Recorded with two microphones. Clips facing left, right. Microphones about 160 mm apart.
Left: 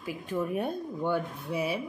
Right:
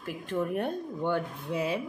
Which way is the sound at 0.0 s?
5° left (ahead or behind).